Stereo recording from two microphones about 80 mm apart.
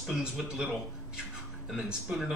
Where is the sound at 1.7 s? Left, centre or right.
Centre.